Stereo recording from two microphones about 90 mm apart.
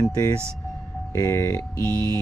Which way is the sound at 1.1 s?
35° left (ahead or behind).